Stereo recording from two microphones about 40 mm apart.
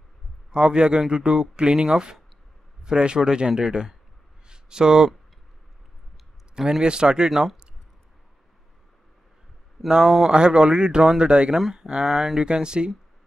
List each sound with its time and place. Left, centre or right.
0.5 s speech: right
6.5 s speech: centre
9.8 s speech: centre
10.3 s speech: right
11.5 s speech: centre